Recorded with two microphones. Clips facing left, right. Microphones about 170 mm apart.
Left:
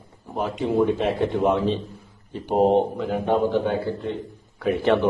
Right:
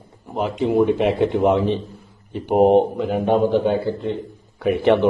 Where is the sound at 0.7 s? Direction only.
15° right (ahead or behind).